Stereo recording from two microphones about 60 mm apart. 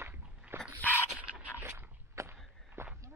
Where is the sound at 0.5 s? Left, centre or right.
Right.